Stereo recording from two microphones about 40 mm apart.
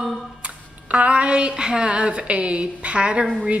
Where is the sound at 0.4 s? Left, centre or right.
Right.